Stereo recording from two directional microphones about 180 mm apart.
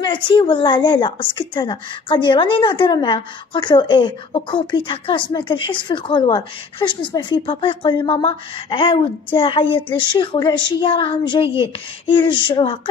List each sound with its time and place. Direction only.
0.0 s a woman's voice: 25° left (ahead or behind)